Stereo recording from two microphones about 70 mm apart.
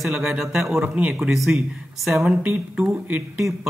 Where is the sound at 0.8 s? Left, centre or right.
Centre.